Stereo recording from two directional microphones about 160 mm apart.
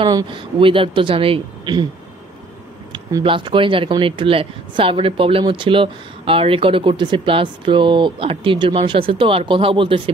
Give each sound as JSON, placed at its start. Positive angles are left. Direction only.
{"t": 0.0, "sound": "speech", "side_deg": -30}
{"t": 2.9, "sound": "speech", "side_deg": -25}